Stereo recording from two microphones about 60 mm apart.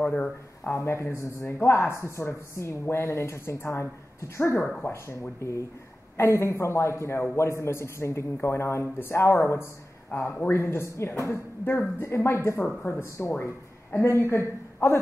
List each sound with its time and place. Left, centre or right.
0.0 s speech: left
0.7 s speech: left
4.2 s speech: left
4.6 s speech: centre
4.8 s speech: left
10.1 s speech: left
10.5 s speech: left
12.6 s speech: left
14.0 s speech: left